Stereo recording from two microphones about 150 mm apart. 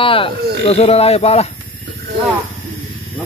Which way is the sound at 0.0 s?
35° left (ahead or behind).